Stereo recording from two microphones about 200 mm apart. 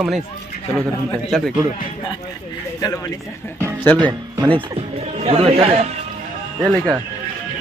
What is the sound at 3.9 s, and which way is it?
Speech, 20° right (ahead or behind).